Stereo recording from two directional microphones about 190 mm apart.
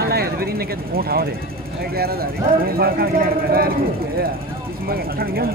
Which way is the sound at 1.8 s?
55° right (ahead or behind).